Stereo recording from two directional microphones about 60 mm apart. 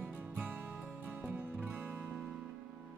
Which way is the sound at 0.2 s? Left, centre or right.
Right.